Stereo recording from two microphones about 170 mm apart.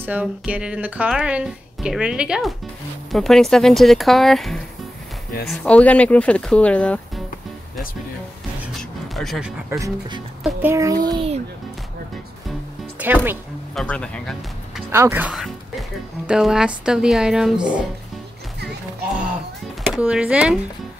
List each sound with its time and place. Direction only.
0.0 s speech: 10° right (ahead or behind); by 7.2 s 5° left (ahead or behind)
9.1 s speech: centre (ahead or behind)
9.7 s a child's voice: 20° right (ahead or behind)
13.0 s speech: 10° right (ahead or behind)
13.7 s speech: 5° left (ahead or behind)
14.9 s speech: 15° right (ahead or behind)
19.9 s speech: 5° right (ahead or behind)